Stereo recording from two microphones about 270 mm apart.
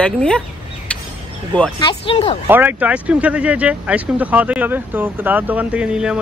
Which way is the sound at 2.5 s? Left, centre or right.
Centre.